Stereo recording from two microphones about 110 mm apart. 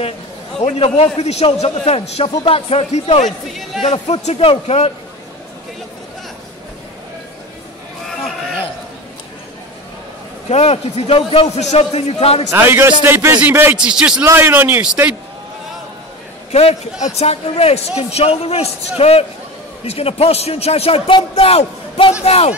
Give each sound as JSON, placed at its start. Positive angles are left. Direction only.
{"t": 0.6, "sound": "a man's voice", "side_deg": 65}
{"t": 3.3, "sound": "a man's voice", "side_deg": 0}
{"t": 3.8, "sound": "a man's voice", "side_deg": 70}
{"t": 10.5, "sound": "a man's voice", "side_deg": 70}
{"t": 11.4, "sound": "a man's voice", "side_deg": 90}
{"t": 12.4, "sound": "a man's voice", "side_deg": -20}
{"t": 13.7, "sound": "a man's voice", "side_deg": -5}
{"t": 14.2, "sound": "a man's voice", "side_deg": -20}
{"t": 17.0, "sound": "a man's voice", "side_deg": 70}